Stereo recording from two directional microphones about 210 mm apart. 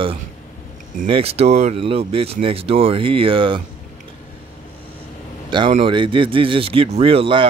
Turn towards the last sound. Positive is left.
turn(degrees=-25)  # may be behind; listen again after turning